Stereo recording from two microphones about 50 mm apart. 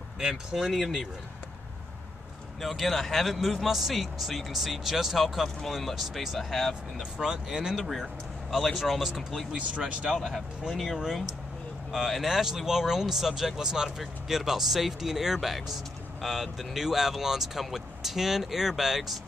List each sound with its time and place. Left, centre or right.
0.2 s speech: centre
2.6 s speech: centre
6.7 s speech: centre
10.7 s speech: centre